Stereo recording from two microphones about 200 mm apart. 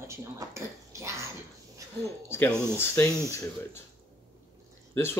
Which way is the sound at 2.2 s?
10° left (ahead or behind).